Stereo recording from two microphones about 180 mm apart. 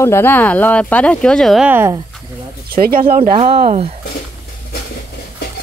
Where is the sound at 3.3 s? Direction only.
30° right (ahead or behind).